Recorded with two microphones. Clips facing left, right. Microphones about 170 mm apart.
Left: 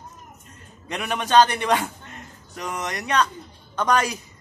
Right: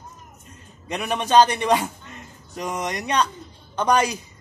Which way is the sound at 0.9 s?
10° right (ahead or behind).